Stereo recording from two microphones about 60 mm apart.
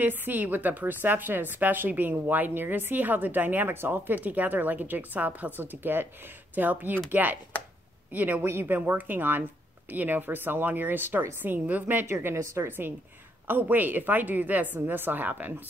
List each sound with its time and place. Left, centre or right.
0.0 s a woman's voice: right
8.5 s speech: right
8.9 s a woman's voice: right
12.1 s a woman's voice: right